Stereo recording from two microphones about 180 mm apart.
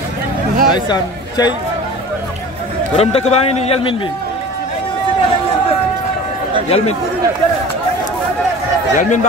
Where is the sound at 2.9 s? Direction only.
35° left (ahead or behind).